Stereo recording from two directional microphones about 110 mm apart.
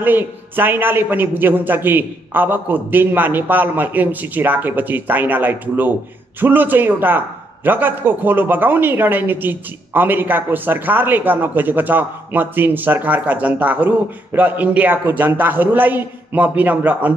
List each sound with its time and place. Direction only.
0.0 s a man's voice: 20° right (ahead or behind)